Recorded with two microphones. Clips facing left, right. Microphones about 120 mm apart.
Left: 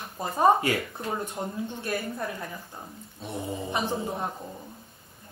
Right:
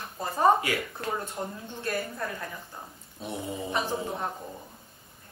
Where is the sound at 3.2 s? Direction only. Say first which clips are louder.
Left 1 dB; centre (ahead or behind).